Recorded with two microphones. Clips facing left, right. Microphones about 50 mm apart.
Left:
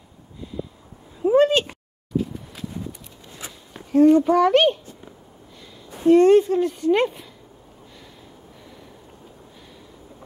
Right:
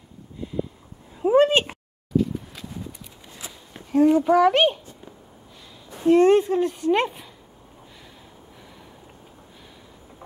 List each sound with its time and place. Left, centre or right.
0.4 s a sound: right
2.1 s horse: centre
3.7 s a child's voice: centre
6.0 s speech: centre